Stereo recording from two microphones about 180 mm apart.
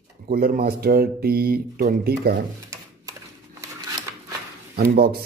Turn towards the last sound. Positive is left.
turn(degrees=-60)  # may be behind; listen again after turning